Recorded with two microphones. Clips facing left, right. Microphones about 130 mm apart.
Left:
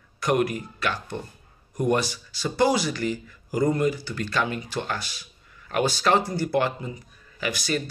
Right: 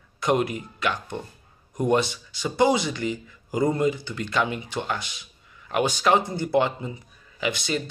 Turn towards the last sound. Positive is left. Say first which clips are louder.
# right 1 dB
turn(degrees=-20)  # may be behind; listen again after turning